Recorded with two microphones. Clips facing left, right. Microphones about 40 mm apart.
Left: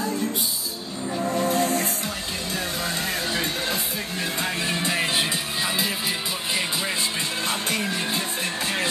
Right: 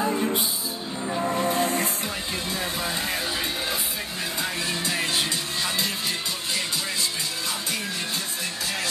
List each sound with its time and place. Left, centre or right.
0.0 s music: right
4.4 s music: left